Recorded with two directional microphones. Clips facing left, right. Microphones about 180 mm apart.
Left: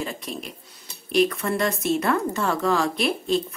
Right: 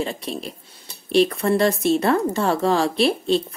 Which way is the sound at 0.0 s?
30° right (ahead or behind).